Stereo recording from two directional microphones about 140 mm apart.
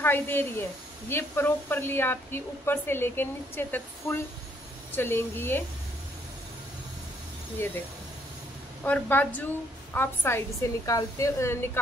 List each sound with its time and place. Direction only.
0.0 s speech: 15° left (ahead or behind)
7.6 s speech: 15° left (ahead or behind)
8.8 s speech: 10° left (ahead or behind)